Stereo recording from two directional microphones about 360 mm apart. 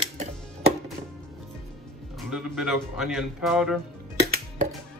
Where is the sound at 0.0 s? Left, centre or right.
Centre.